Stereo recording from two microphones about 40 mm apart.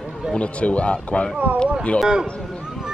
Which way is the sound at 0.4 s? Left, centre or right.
Left.